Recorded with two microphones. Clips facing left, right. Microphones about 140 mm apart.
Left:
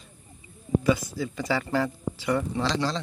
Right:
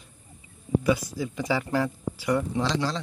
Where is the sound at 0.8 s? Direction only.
10° right (ahead or behind).